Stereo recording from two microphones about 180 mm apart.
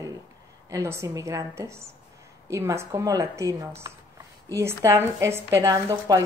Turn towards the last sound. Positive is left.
turn(degrees=-20)  # may be behind; listen again after turning